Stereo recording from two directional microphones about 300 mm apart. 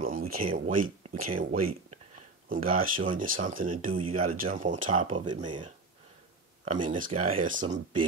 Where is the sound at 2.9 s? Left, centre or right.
Right.